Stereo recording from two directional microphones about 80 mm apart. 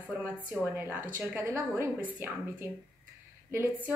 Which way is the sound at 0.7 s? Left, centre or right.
Right.